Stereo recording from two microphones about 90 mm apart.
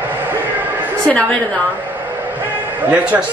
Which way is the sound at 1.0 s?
10° left (ahead or behind).